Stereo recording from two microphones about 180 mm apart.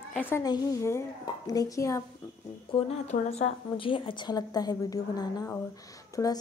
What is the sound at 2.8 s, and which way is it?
A woman's voice, 35° left (ahead or behind).